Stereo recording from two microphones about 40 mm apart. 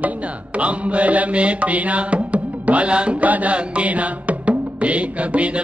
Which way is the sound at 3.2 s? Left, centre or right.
Right.